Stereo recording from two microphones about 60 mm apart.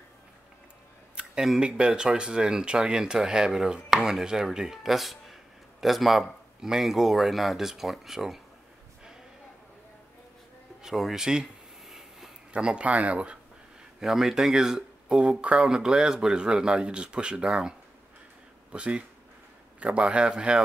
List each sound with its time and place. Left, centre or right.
1.1 s speech: centre
10.8 s speech: centre
12.5 s speech: centre
13.9 s speech: centre